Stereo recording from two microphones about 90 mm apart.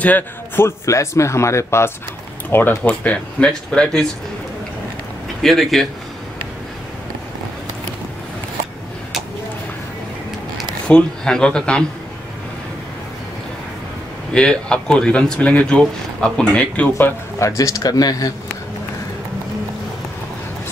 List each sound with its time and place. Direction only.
0.0 s speech: 20° left (ahead or behind)
0.7 s speech: 35° left (ahead or behind); by 4.1 s 10° left (ahead or behind)
5.4 s speech: centre (ahead or behind)
10.9 s speech: 10° left (ahead or behind)
14.3 s speech: 10° left (ahead or behind)
17.4 s speech: 35° left (ahead or behind)